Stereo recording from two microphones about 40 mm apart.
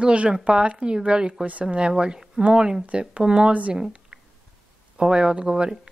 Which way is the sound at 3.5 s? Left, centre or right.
Right.